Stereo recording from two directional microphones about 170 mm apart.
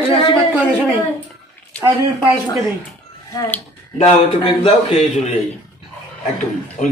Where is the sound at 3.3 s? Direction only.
20° left (ahead or behind).